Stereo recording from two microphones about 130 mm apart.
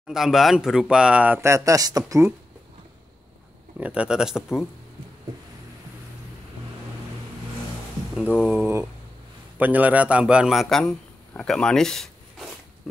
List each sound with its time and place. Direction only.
0.1 s speech: centre (ahead or behind); by 2.3 s 25° right (ahead or behind)
3.8 s speech: 10° right (ahead or behind)
8.2 s a man's voice: 10° right (ahead or behind)